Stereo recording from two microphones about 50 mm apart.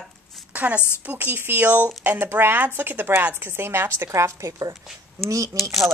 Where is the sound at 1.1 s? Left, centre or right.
Right.